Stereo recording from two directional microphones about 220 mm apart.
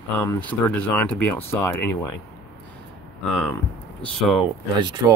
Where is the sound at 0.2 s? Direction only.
10° left (ahead or behind).